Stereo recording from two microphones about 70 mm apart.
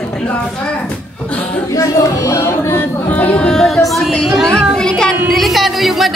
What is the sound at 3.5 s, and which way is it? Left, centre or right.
A woman's voice, centre.